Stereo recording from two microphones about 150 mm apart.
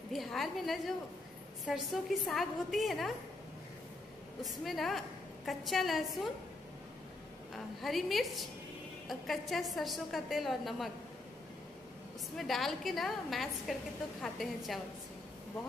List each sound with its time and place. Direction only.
0.1 s a woman's voice: centre (ahead or behind)
4.4 s a woman's voice: centre (ahead or behind)
7.5 s a woman's voice: centre (ahead or behind)
12.4 s a woman's voice: centre (ahead or behind)